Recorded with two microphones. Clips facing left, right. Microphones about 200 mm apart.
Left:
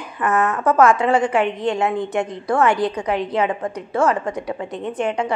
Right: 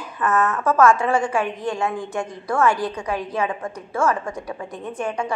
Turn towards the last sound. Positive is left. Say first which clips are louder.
# left 4 dB
turn(degrees=20)  # may be behind; listen again after turning